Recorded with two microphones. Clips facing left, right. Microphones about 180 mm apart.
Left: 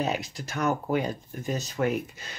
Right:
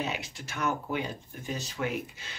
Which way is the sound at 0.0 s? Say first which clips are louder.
Left 5 dB; 40° left (ahead or behind).